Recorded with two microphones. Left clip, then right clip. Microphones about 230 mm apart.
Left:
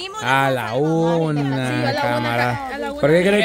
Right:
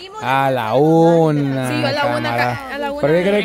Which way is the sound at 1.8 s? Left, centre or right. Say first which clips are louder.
Right 3 dB; right.